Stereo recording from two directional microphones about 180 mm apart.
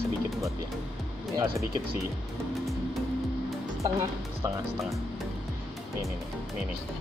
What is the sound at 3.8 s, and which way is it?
Speech, 15° right (ahead or behind).